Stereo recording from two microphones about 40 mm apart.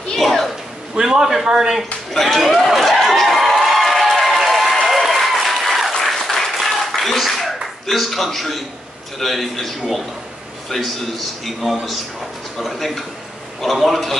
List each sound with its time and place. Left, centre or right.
0.1 s a sound: centre
0.9 s a man's voice: centre
2.1 s crowd: centre
4.8 s applause: centre
7.8 s speech: centre